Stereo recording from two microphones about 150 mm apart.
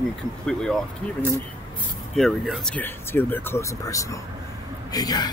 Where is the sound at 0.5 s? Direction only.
5° left (ahead or behind).